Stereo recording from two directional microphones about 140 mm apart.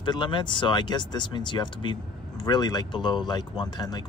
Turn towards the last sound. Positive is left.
turn(degrees=30)  # may be behind; listen again after turning